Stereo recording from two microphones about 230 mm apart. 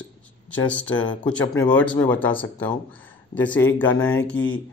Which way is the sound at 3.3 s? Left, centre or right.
Centre.